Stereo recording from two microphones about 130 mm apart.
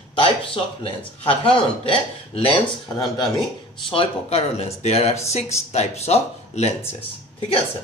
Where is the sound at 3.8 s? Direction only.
45° left (ahead or behind).